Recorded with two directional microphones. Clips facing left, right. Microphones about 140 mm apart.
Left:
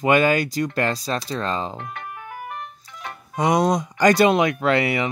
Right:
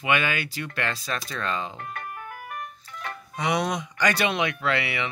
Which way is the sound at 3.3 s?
45° left (ahead or behind).